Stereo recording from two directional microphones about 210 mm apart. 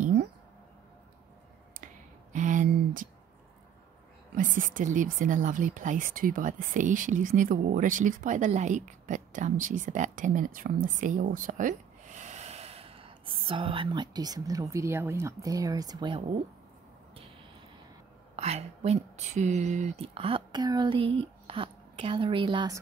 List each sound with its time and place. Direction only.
2.3 s a sound: 35° right (ahead or behind)
4.4 s speech: 40° right (ahead or behind); by 16.3 s 20° right (ahead or behind)
18.3 s speech: 30° right (ahead or behind)